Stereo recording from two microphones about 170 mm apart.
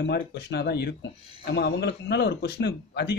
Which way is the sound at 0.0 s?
75° left (ahead or behind).